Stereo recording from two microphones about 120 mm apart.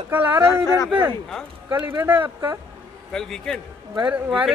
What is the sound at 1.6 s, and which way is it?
Speech, 15° right (ahead or behind).